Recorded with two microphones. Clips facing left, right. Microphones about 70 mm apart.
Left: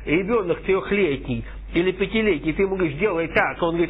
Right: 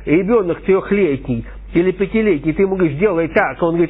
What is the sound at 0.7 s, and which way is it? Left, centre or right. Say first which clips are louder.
Speech: right 7 dB; right.